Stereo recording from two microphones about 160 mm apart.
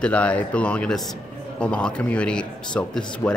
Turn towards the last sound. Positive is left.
turn(degrees=20)  # may be behind; listen again after turning